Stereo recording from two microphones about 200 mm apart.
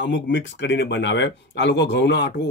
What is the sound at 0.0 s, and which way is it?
Speech, 65° left (ahead or behind).